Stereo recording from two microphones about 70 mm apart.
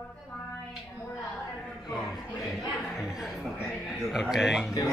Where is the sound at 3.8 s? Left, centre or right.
Centre.